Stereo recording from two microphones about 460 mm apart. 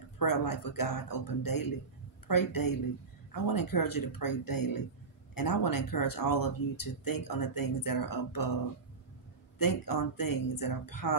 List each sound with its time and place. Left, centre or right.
0.2 s speech: left
9.6 s speech: left